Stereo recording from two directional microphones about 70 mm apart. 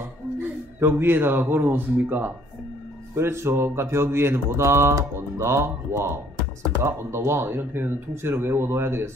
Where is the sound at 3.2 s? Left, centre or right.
Right.